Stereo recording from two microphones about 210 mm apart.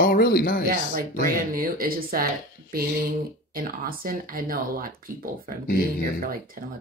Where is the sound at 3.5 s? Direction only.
45° right (ahead or behind).